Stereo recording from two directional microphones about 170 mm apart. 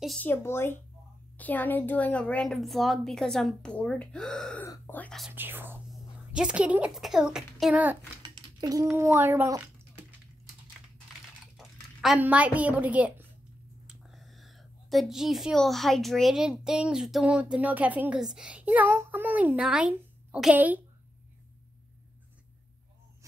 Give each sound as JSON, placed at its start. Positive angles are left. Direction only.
{"t": 0.0, "sound": "speech", "side_deg": 0}
{"t": 0.3, "sound": "a woman's voice", "side_deg": 15}
{"t": 5.3, "sound": "a woman's voice", "side_deg": -10}
{"t": 8.2, "sound": "a sound", "side_deg": -25}
{"t": 8.9, "sound": "speech", "side_deg": -15}
{"t": 11.5, "sound": "a woman's voice", "side_deg": 0}